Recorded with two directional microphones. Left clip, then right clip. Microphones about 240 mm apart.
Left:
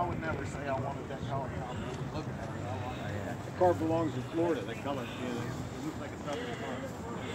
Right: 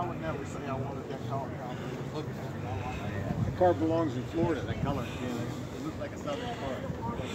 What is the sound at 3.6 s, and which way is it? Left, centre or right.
Speech, right.